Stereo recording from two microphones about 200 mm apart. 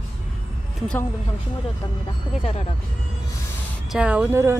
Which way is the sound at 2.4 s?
30° left (ahead or behind).